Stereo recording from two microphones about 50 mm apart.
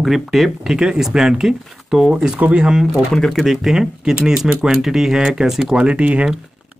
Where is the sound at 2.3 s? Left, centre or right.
Right.